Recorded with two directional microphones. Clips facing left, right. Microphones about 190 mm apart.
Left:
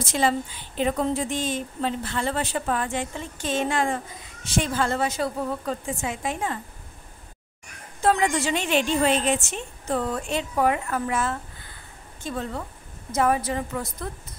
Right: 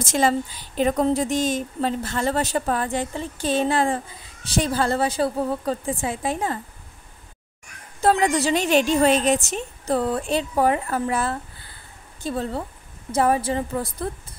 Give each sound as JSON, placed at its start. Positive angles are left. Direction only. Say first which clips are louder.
{"t": 0.0, "sound": "a woman's voice", "louder": "right 3 dB", "side_deg": -45}
{"t": 8.0, "sound": "a woman's voice", "louder": "right 3 dB", "side_deg": -35}